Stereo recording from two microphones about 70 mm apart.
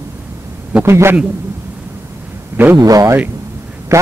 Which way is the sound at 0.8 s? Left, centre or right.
Right.